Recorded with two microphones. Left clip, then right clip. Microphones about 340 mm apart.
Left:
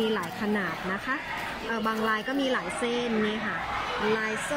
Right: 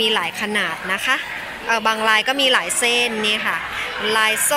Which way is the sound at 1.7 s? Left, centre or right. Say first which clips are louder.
Right 12 dB; centre.